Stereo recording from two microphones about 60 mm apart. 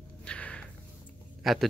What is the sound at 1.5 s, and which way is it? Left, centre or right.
Speech, centre.